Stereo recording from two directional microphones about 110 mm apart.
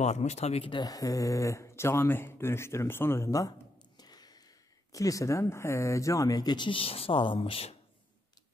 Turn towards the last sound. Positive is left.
turn(degrees=60)  # may be behind; listen again after turning